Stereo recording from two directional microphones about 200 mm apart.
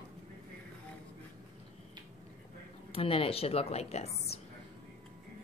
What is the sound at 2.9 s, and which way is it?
A woman's voice, 30° left (ahead or behind).